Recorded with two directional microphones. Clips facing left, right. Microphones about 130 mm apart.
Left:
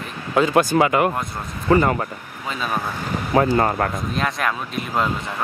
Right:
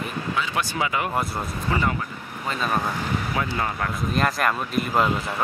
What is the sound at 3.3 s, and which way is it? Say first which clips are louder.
Speech: left 9 dB; 45° left (ahead or behind).